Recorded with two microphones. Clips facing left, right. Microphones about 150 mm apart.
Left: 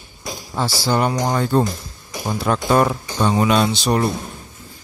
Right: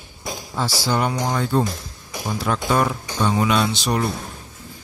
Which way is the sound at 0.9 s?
40° left (ahead or behind).